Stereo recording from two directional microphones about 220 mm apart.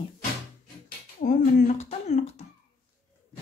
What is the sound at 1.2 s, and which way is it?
Speech, 30° left (ahead or behind).